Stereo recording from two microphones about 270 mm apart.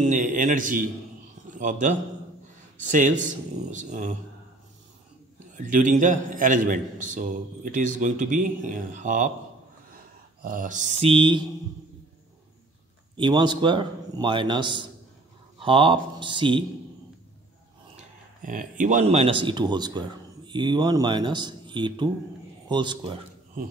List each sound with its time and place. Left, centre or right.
0.0 s a man's voice: right
5.6 s a man's voice: right
10.4 s a man's voice: right
13.1 s a man's voice: centre
17.9 s a man's voice: right